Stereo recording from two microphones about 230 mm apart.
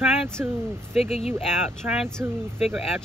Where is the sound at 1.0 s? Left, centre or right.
Left.